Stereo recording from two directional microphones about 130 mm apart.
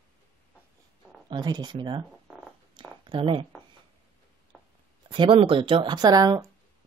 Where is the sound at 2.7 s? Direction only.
35° right (ahead or behind).